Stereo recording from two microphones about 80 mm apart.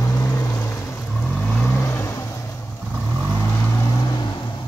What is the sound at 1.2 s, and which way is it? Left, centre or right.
Vehicle, centre.